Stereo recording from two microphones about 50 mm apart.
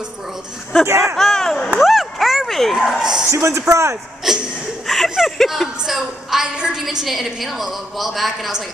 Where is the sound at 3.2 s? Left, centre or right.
Right.